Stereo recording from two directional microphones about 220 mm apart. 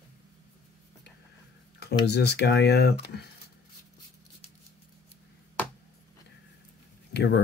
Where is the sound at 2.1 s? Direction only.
50° left (ahead or behind).